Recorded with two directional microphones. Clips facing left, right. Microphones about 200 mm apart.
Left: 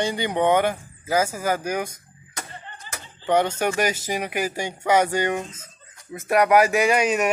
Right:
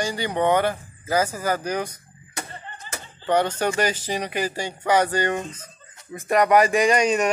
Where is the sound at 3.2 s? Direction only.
10° left (ahead or behind).